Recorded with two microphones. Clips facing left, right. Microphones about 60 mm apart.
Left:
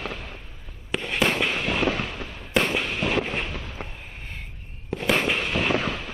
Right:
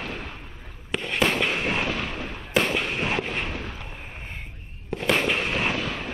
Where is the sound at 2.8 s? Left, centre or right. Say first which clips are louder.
Left 1 dB; right.